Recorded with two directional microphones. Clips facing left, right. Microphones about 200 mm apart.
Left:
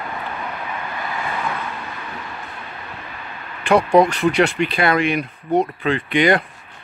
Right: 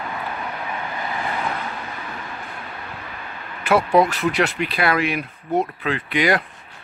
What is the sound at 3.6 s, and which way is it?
Speech, 5° right (ahead or behind).